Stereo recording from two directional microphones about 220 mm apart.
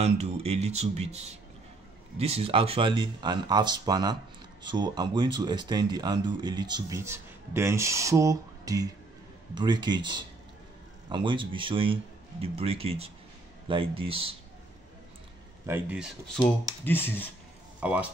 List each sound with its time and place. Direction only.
0.0 s speech: 30° right (ahead or behind)
15.6 s speech: 10° right (ahead or behind); by 17.3 s 10° left (ahead or behind)
17.7 s speech: 5° right (ahead or behind)